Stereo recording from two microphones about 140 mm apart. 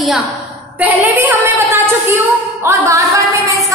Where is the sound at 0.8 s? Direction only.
10° right (ahead or behind).